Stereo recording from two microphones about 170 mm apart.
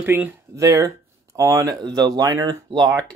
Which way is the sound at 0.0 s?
10° right (ahead or behind).